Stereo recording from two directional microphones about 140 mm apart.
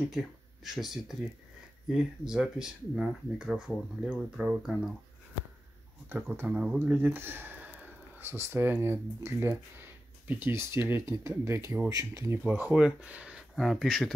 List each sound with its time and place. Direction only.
0.7 s speech: centre (ahead or behind)
6.0 s speech: 15° right (ahead or behind)